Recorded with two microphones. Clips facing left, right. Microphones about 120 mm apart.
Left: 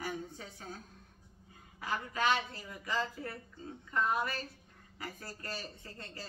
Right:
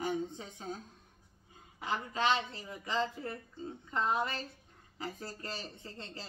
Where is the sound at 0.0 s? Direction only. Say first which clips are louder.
Right 5 dB; 20° right (ahead or behind).